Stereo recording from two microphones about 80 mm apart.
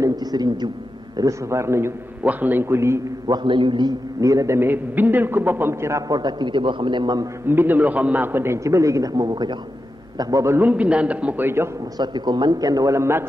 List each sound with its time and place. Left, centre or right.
0.0 s a man's voice: right
1.1 s a man's voice: right
2.2 s a man's voice: right
3.3 s a man's voice: right
4.2 s a man's voice: right
4.6 s a man's voice: right
6.1 s a man's voice: right
7.4 s a man's voice: right
8.6 s a man's voice: right
10.6 s a woman's voice: centre
11.4 s a man's voice: right
12.0 s a man's voice: right